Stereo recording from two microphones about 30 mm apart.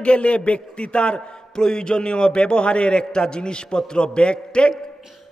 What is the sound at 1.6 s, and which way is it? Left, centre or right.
A man's voice, left.